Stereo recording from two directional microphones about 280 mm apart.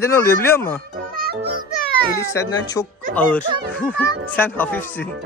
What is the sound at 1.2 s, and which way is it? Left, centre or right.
Music, right.